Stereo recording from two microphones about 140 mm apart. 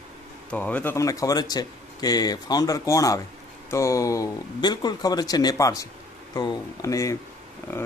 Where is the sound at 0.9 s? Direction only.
25° left (ahead or behind).